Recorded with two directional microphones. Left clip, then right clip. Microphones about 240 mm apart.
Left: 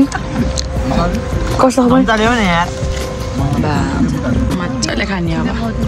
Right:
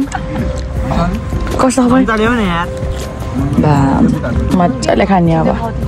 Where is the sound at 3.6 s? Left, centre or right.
Right.